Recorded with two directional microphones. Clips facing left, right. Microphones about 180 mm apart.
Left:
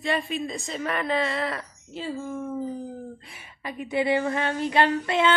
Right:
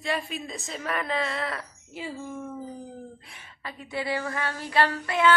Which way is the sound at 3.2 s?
10° left (ahead or behind).